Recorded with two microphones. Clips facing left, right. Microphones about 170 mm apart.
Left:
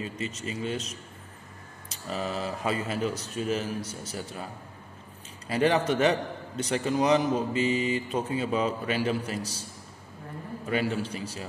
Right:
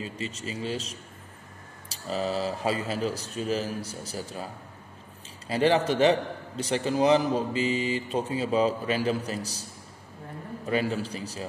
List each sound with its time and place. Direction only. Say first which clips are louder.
0.0 s speech: left 1 dB; 35° right (ahead or behind)
5.5 s speech: right 1 dB; 30° right (ahead or behind)
10.7 s speech: right 1 dB; 35° right (ahead or behind)